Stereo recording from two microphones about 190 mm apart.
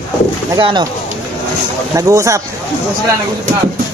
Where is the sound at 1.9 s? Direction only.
15° right (ahead or behind).